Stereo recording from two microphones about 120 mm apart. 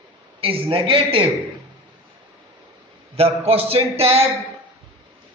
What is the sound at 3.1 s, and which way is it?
A man's voice, 55° right (ahead or behind).